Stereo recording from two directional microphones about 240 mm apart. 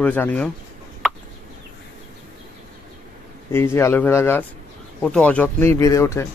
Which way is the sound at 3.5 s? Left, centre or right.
Centre.